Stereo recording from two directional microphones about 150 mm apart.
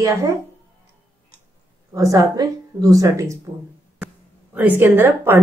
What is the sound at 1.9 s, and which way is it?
A woman's voice, 25° right (ahead or behind).